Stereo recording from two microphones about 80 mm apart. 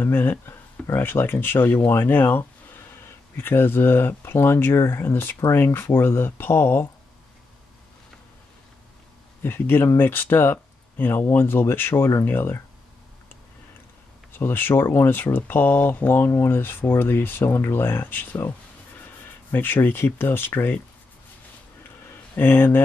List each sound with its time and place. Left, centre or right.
0.0 s speech: left
9.4 s speech: left
14.4 s speech: left
19.5 s speech: left
22.3 s speech: left